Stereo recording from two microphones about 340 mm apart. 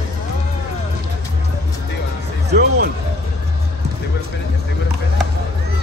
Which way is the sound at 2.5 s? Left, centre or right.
Right.